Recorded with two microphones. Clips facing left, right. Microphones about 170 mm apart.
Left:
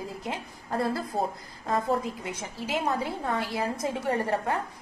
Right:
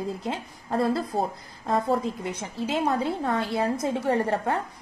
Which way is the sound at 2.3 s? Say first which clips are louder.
Right 4 dB; 20° right (ahead or behind).